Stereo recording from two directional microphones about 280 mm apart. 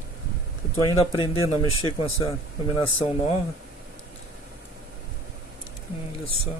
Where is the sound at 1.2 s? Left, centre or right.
Centre.